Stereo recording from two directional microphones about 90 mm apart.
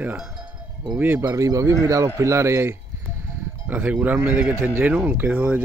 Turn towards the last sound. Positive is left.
turn(degrees=-15)  # may be behind; listen again after turning